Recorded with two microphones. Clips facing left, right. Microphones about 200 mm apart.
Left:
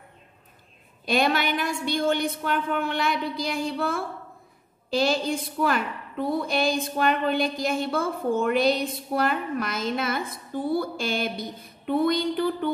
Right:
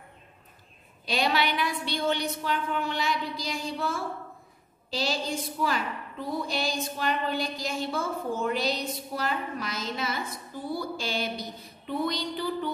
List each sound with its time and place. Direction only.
1.0 s a woman's voice: 50° left (ahead or behind)